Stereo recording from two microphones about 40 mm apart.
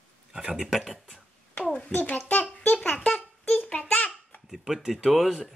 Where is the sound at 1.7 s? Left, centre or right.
Left.